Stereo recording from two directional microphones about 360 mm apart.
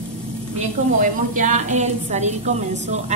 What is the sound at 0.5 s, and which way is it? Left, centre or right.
A woman's voice, centre.